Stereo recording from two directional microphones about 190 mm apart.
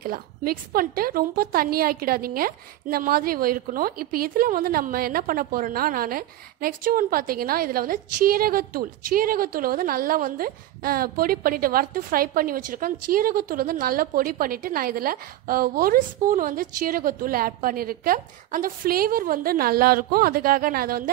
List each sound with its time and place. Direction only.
0.0 s a woman's voice: 50° right (ahead or behind)